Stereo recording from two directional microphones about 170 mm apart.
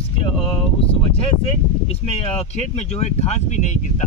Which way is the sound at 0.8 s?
35° left (ahead or behind).